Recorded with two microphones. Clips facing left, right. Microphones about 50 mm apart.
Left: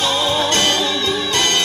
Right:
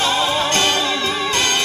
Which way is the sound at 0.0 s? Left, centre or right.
Right.